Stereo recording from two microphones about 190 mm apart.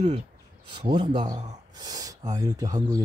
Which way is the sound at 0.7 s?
25° right (ahead or behind).